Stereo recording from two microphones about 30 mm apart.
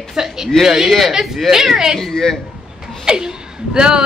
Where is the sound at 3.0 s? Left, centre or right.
Right.